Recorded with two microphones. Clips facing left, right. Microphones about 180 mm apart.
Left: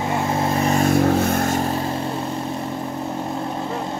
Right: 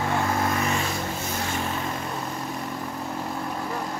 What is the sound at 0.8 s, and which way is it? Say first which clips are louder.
Vehicle: left 13 dB; 60° left (ahead or behind).